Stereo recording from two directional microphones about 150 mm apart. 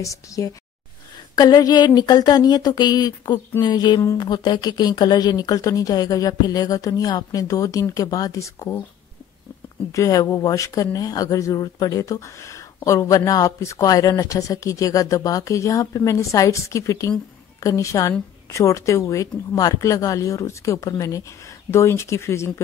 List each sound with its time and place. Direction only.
0.0 s speech: 20° left (ahead or behind)
9.9 s speech: 20° left (ahead or behind)